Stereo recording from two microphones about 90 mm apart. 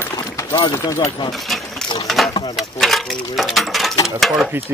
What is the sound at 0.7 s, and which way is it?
Speech, 40° left (ahead or behind).